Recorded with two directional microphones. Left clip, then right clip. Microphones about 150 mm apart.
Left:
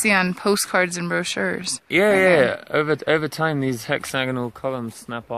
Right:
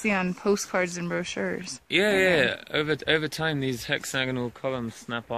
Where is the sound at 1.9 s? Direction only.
30° left (ahead or behind).